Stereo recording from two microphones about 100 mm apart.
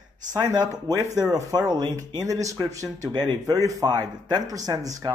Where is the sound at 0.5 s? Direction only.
40° right (ahead or behind).